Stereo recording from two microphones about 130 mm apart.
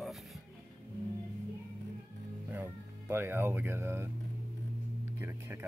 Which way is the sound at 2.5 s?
15° right (ahead or behind).